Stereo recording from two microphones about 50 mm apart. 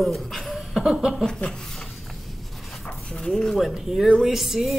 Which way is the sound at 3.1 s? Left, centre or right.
Centre.